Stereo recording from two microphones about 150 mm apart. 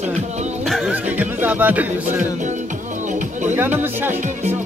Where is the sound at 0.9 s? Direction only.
10° right (ahead or behind).